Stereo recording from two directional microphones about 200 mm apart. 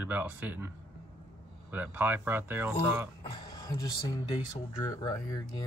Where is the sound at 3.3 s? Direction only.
20° left (ahead or behind).